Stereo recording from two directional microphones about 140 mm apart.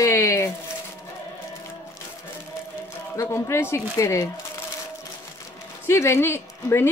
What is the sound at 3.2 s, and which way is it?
Speech, 20° left (ahead or behind).